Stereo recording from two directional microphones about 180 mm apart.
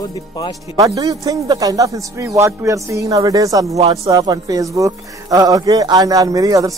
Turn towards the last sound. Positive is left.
turn(degrees=-20)  # may be behind; listen again after turning